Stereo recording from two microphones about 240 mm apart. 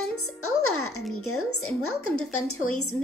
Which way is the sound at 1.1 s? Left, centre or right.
Left.